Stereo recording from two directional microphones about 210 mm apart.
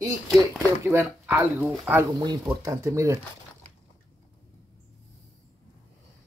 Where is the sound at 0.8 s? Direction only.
10° right (ahead or behind).